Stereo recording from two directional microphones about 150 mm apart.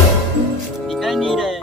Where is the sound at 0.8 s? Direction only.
Centre (ahead or behind).